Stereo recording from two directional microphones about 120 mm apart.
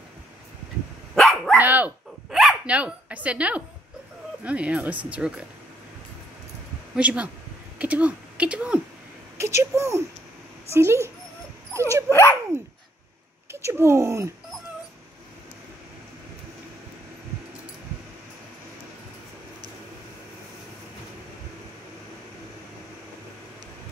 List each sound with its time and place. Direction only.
1.1 s dog: centre (ahead or behind)
1.6 s dog: 15° right (ahead or behind)
2.3 s speech: 5° right (ahead or behind)
7.0 s speech: 10° right (ahead or behind)
9.4 s speech: 25° right (ahead or behind)
11.7 s dog: 20° right (ahead or behind)
12.1 s speech: 20° left (ahead or behind)
13.5 s speech: 20° right (ahead or behind)